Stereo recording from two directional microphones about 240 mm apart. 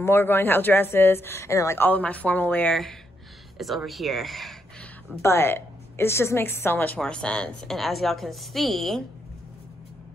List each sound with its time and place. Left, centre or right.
0.0 s speech: centre